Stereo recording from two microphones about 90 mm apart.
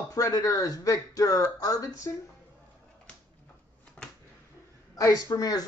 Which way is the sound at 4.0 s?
10° left (ahead or behind).